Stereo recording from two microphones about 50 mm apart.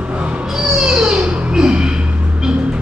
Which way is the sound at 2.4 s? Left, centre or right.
Centre.